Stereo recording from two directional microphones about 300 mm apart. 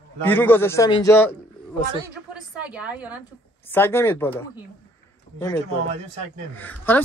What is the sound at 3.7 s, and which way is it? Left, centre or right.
Speech, centre.